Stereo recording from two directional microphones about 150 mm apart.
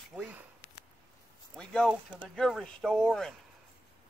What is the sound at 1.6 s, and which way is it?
Speech, 5° left (ahead or behind).